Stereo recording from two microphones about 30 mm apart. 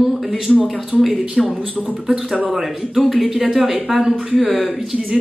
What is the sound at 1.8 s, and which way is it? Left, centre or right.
Speech, centre.